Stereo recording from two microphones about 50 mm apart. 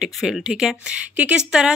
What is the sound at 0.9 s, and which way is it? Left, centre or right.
Speech, right.